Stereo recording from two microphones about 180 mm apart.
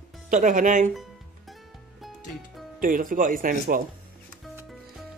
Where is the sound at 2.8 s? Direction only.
50° right (ahead or behind).